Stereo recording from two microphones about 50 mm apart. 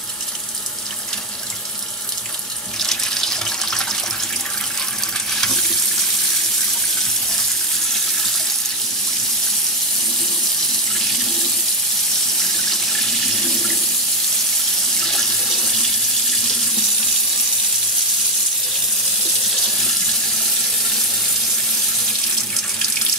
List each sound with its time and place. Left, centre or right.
2.8 s water tap: centre
5.3 s water tap: centre
12.4 s water tap: centre
15.0 s water tap: centre
19.6 s water tap: centre